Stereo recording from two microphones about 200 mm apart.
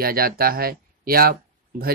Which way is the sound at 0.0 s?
50° right (ahead or behind).